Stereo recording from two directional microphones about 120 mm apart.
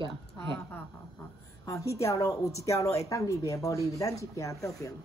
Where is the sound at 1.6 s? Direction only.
25° left (ahead or behind).